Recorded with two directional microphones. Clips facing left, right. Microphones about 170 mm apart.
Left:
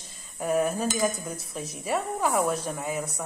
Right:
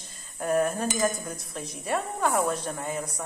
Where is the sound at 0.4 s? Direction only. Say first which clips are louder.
Even; 5° left (ahead or behind).